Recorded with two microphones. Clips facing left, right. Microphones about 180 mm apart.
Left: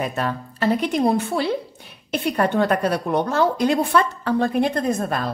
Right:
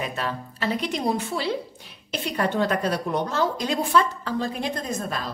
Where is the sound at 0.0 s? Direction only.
50° left (ahead or behind).